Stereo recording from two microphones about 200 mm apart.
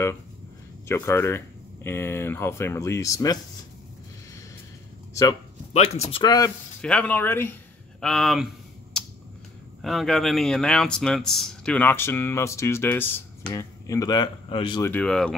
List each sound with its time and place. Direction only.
0.8 s speech: 15° left (ahead or behind)
5.7 s speech: 30° left (ahead or behind)
6.2 s speech: 20° left (ahead or behind)
6.8 s speech: 5° left (ahead or behind)
9.0 s a sound: 5° left (ahead or behind)
9.8 s speech: centre (ahead or behind); by 14.9 s 25° left (ahead or behind)
14.9 s speech: 5° left (ahead or behind)